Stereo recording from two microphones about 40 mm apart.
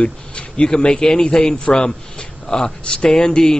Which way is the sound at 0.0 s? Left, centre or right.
Left.